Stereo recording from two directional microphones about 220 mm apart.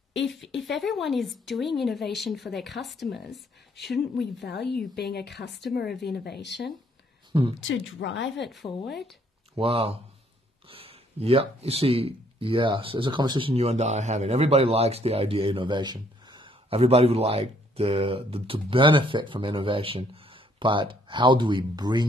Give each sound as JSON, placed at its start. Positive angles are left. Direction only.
{"t": 0.6, "sound": "speech", "side_deg": 0}
{"t": 4.2, "sound": "a woman's voice", "side_deg": 50}
{"t": 9.6, "sound": "speech", "side_deg": -25}